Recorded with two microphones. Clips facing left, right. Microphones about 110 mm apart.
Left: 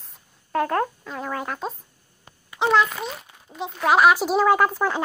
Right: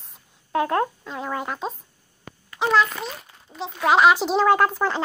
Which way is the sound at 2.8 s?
5° left (ahead or behind).